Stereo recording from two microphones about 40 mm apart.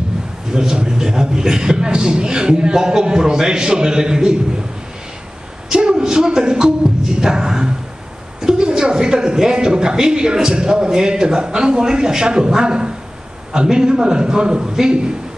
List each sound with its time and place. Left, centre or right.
0.5 s a woman's voice: centre
5.7 s music: centre
8.4 s a woman's voice: centre